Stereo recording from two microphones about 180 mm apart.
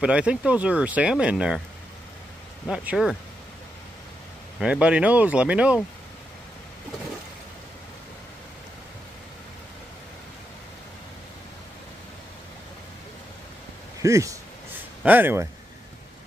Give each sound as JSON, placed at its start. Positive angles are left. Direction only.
{"t": 0.0, "sound": "speech", "side_deg": -5}
{"t": 2.7, "sound": "speech", "side_deg": -5}
{"t": 4.6, "sound": "speech", "side_deg": -5}
{"t": 14.0, "sound": "speech", "side_deg": -15}